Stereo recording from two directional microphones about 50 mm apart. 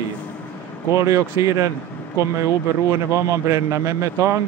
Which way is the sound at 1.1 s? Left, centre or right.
Right.